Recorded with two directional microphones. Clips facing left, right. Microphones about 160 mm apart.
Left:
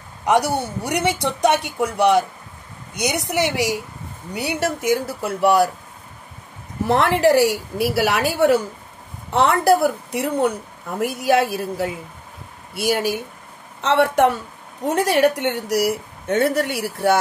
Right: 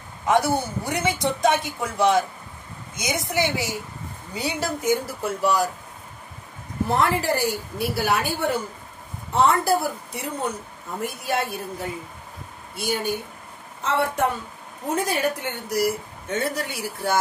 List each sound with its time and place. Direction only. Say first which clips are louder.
0.2 s a woman's voice: left 2 dB; 75° left (ahead or behind)
6.9 s a woman's voice: left 7 dB; 70° left (ahead or behind)
11.0 s a woman's voice: left 8 dB; 80° left